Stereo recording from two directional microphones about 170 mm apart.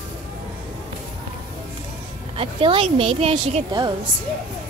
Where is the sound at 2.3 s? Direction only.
35° right (ahead or behind).